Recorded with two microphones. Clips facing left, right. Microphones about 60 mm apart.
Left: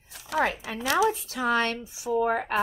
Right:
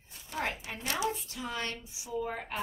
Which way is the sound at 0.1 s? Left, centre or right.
Left.